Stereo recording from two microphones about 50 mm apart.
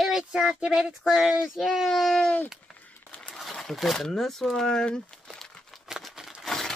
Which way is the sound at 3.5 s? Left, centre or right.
Centre.